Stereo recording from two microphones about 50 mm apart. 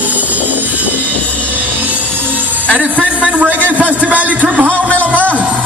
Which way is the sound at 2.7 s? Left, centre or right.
Right.